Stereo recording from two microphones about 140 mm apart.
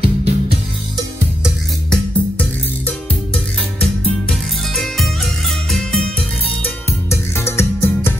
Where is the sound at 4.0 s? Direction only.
5° left (ahead or behind).